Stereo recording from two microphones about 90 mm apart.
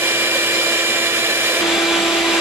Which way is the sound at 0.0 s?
25° right (ahead or behind).